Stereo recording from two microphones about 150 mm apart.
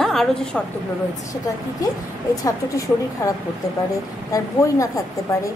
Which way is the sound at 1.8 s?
25° left (ahead or behind).